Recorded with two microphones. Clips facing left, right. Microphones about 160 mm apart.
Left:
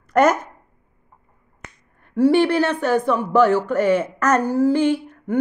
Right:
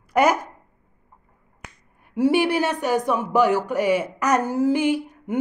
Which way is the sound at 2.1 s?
15° right (ahead or behind).